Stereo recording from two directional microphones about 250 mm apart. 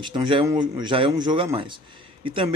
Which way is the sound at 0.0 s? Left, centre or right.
Centre.